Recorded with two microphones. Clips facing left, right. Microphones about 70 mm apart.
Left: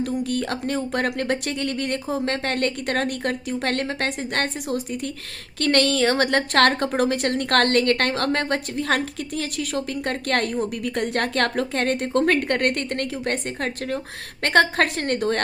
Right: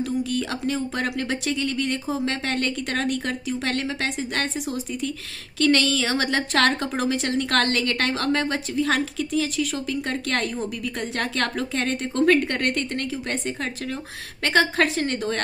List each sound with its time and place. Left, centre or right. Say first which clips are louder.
0.0 s speech: left 1 dB; left
14.4 s speech: left 2 dB; left